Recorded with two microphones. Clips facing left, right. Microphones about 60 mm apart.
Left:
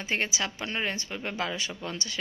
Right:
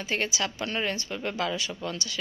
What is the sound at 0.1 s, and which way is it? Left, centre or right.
A woman's voice, left.